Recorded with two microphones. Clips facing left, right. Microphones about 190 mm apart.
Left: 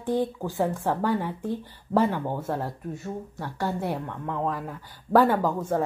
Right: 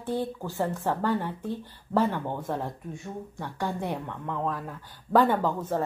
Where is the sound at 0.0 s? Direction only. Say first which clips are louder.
Left 4 dB; 15° left (ahead or behind).